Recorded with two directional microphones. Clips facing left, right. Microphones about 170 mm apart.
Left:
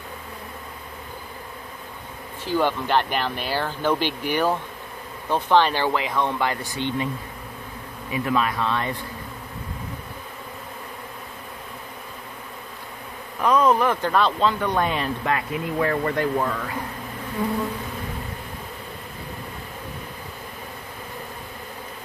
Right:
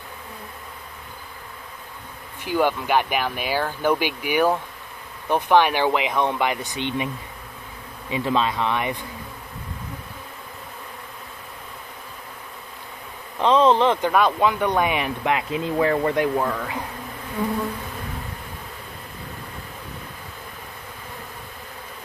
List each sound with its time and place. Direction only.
2.4 s speech: 10° right (ahead or behind)
8.1 s speech: 25° right (ahead or behind)
13.4 s speech: 25° right (ahead or behind)
14.1 s speech: 15° right (ahead or behind)